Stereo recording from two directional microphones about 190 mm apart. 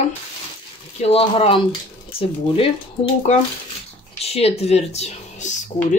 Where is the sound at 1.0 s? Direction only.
30° left (ahead or behind).